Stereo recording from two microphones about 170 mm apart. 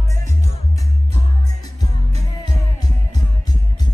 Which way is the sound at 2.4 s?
25° left (ahead or behind).